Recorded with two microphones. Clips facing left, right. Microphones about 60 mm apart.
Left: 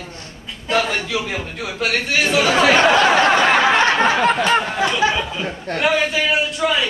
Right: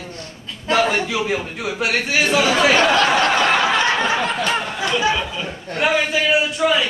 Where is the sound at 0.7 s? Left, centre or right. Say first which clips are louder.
Right 2 dB; centre.